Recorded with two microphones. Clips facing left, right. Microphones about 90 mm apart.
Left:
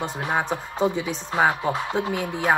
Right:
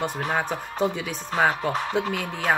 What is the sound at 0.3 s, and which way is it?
Speech, 20° left (ahead or behind).